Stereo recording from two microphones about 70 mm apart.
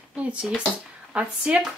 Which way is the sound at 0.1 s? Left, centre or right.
Centre.